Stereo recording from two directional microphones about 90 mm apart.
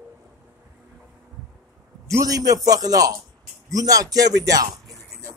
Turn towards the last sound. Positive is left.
turn(degrees=-45)  # may be behind; listen again after turning